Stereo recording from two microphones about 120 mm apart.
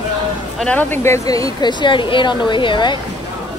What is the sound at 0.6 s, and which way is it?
Speech, 10° left (ahead or behind).